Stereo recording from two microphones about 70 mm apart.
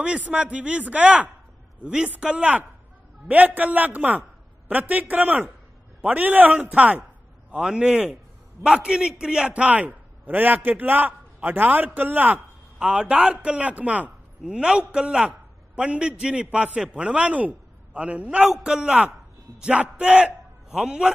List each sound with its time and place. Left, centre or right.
0.0 s a man's voice: centre
12.7 s a man's voice: centre
18.5 s a man's voice: centre